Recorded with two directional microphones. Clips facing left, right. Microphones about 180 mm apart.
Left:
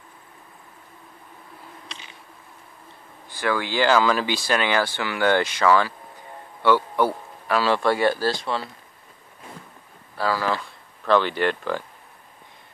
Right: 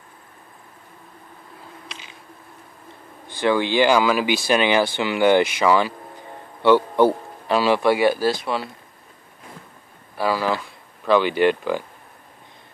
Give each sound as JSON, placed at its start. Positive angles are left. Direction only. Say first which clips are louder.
{"t": 3.3, "sound": "a man's voice", "louder": "right 5 dB", "side_deg": -25}
{"t": 10.1, "sound": "speech", "louder": "right 2 dB", "side_deg": -15}